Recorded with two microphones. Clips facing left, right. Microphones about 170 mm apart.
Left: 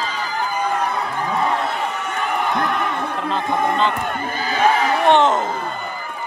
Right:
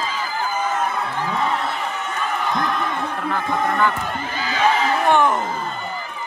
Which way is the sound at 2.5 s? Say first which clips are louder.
Left 2 dB; 60° left (ahead or behind).